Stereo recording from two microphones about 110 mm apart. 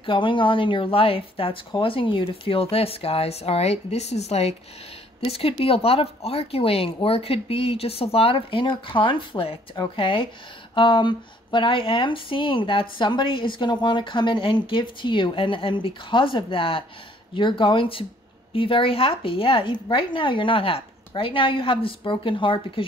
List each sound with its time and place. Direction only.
0.0 s speech: 50° left (ahead or behind); by 4.6 s 70° left (ahead or behind)
5.2 s speech: 60° left (ahead or behind)